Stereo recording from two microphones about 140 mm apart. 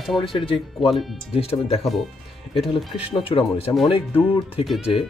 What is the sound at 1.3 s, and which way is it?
Speech, 45° left (ahead or behind).